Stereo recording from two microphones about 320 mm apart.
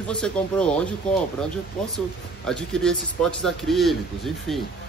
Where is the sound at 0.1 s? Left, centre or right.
Centre.